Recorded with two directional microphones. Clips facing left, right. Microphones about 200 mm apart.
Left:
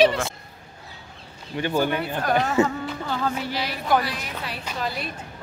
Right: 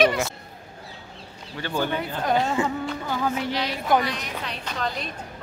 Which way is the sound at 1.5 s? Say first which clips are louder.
Left 4 dB; 15° left (ahead or behind).